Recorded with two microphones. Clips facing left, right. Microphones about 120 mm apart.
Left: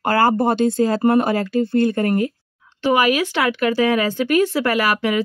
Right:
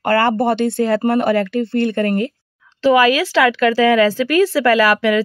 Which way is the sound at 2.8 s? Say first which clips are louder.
Right 4 dB; 90° right.